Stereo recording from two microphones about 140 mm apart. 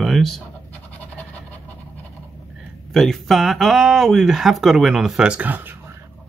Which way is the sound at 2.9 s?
Centre (ahead or behind).